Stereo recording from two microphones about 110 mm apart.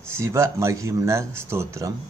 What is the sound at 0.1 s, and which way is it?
Speech, 25° right (ahead or behind).